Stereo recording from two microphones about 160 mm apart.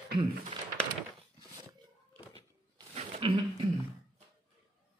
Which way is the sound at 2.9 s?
40° right (ahead or behind).